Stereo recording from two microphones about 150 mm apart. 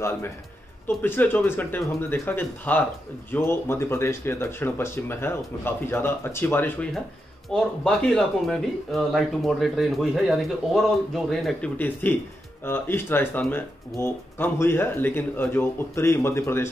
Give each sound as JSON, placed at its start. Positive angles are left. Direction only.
{"t": 0.8, "sound": "speech", "side_deg": 15}
{"t": 11.8, "sound": "speech", "side_deg": 15}